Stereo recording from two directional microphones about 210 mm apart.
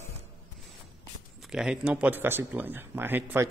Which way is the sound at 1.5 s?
5° right (ahead or behind).